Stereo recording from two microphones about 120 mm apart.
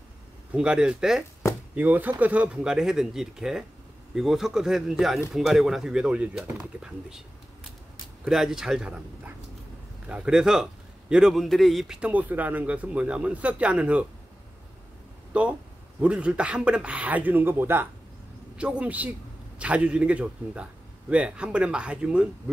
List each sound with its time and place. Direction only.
0.5 s a man's voice: 10° right (ahead or behind)
8.3 s a man's voice: 5° right (ahead or behind)
15.3 s a man's voice: 10° right (ahead or behind)